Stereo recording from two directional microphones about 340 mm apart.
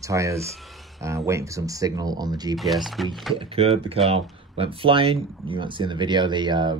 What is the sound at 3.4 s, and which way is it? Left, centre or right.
Speech, centre.